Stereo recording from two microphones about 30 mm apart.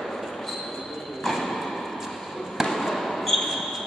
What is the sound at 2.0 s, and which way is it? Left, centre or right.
Basketball bounce, centre.